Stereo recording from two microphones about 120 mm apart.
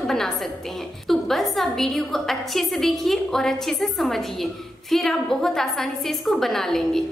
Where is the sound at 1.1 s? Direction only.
Centre (ahead or behind).